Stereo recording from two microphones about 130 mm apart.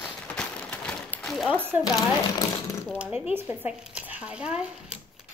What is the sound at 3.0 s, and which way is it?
Speech, 10° right (ahead or behind).